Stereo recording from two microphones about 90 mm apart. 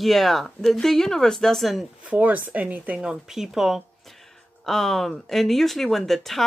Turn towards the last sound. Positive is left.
turn(degrees=5)  # may be behind; listen again after turning